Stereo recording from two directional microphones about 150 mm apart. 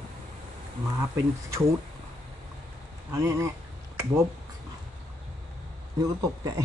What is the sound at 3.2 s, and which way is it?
Speech, 20° right (ahead or behind).